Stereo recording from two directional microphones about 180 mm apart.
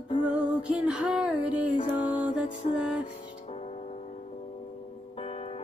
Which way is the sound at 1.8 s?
30° left (ahead or behind).